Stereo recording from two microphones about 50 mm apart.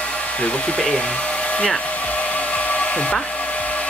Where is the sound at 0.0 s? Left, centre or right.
Left.